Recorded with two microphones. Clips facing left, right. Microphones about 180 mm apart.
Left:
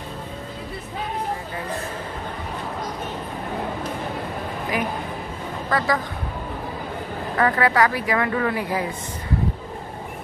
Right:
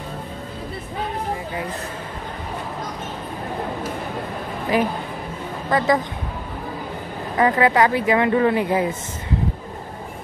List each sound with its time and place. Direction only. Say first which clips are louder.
4.7 s speech: right 6 dB; 30° right (ahead or behind)
7.3 s speech: right 3 dB; 20° right (ahead or behind)